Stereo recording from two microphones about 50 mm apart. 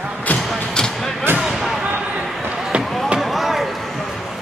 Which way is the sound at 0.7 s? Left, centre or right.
Centre.